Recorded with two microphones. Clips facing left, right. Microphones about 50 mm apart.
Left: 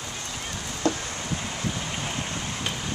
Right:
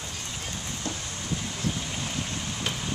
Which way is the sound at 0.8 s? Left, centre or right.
Left.